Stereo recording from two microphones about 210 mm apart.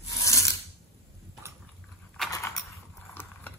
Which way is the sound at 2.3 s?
15° left (ahead or behind).